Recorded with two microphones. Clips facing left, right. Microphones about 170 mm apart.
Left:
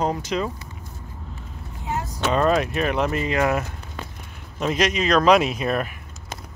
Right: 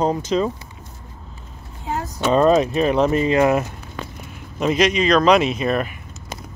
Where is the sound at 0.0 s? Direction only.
25° right (ahead or behind).